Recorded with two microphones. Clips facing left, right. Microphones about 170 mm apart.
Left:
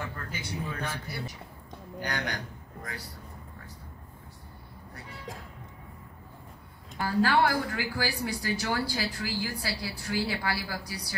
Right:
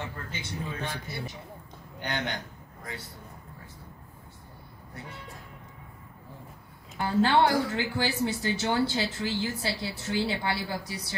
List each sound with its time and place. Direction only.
0.0 s speech: 25° right (ahead or behind)
7.0 s speech: 25° right (ahead or behind)